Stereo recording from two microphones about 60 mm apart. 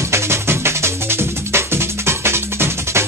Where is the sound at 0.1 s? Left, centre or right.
Right.